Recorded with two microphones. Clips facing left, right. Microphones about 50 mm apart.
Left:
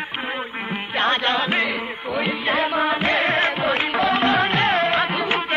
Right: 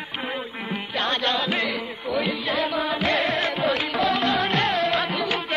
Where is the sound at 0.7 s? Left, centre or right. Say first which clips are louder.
Left 5 dB; left.